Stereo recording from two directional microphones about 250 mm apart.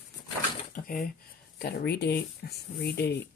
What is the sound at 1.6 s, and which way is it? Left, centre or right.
Speech, left.